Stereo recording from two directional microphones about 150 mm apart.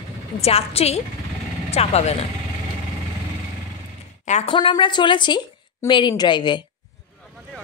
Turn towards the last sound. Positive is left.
turn(degrees=30)  # may be behind; listen again after turning